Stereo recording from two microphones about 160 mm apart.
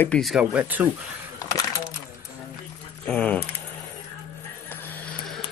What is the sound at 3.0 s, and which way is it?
Speech, 10° left (ahead or behind).